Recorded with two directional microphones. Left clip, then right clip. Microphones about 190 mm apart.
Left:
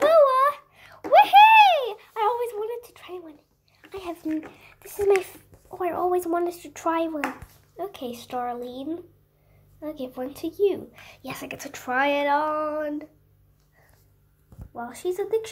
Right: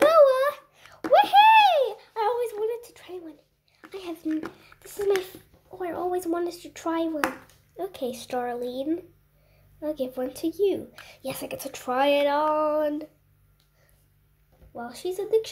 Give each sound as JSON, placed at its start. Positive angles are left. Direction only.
{"t": 0.0, "sound": "a sound", "side_deg": -15}
{"t": 3.9, "sound": "a child's voice", "side_deg": 0}
{"t": 7.7, "sound": "a child's voice", "side_deg": -20}